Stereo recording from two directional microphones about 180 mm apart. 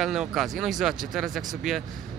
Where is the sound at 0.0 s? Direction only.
Centre (ahead or behind).